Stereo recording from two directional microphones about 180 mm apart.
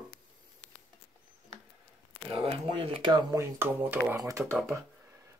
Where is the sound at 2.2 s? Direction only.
30° right (ahead or behind); by 4.4 s 15° right (ahead or behind).